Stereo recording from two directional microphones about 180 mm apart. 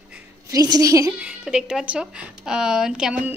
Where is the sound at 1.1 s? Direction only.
5° right (ahead or behind).